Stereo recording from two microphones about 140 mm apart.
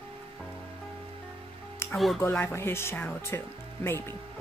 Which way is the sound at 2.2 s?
15° left (ahead or behind).